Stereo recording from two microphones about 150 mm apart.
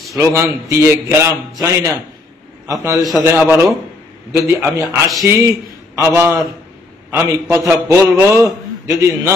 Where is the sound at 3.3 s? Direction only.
10° right (ahead or behind).